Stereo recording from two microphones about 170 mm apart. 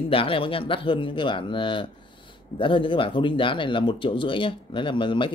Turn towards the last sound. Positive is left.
turn(degrees=30)  # may be behind; listen again after turning